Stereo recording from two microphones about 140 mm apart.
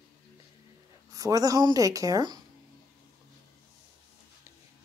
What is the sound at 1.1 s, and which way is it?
A woman's voice, 25° right (ahead or behind).